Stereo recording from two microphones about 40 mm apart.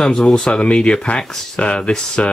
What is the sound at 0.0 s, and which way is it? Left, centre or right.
Speech, left.